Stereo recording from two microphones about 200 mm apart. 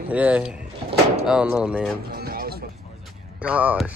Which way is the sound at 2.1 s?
50° right (ahead or behind).